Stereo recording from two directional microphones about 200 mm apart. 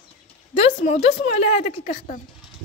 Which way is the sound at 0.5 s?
35° left (ahead or behind).